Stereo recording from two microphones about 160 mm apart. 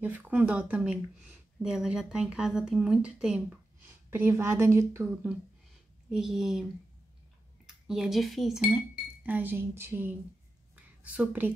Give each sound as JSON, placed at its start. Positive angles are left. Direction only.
{"t": 0.0, "sound": "a woman's voice", "side_deg": -10}
{"t": 6.0, "sound": "a woman's voice", "side_deg": -5}
{"t": 7.6, "sound": "speech", "side_deg": 0}
{"t": 11.1, "sound": "a woman's voice", "side_deg": -10}